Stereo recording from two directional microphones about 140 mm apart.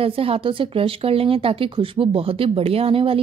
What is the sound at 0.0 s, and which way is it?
Speech, 40° right (ahead or behind).